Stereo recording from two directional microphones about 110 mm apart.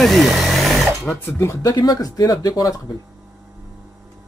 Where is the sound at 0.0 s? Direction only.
Centre (ahead or behind).